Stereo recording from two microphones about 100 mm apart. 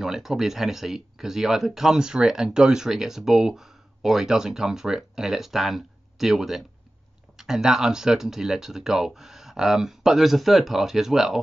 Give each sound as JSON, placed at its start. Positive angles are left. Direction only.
{"t": 0.0, "sound": "speech", "side_deg": -5}